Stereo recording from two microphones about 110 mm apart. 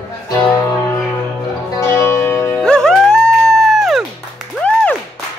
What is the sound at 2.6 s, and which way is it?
Music, 5° left (ahead or behind).